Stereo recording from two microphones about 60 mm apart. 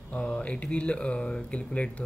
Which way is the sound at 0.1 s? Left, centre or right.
Centre.